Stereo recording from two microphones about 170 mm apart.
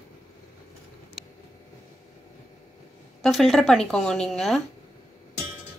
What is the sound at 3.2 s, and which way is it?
Speech, centre (ahead or behind).